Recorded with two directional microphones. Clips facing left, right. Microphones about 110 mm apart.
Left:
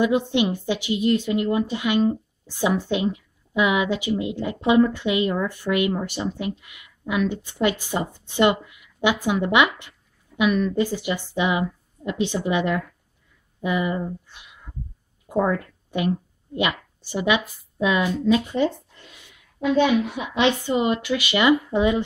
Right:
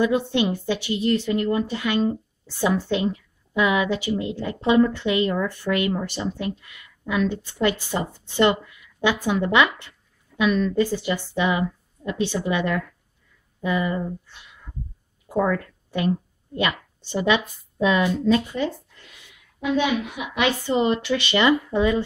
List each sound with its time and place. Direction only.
0.0 s a woman's voice: 15° left (ahead or behind)
18.3 s speech: 25° left (ahead or behind)
19.6 s a woman's voice: 35° left (ahead or behind)
20.6 s speech: 15° left (ahead or behind)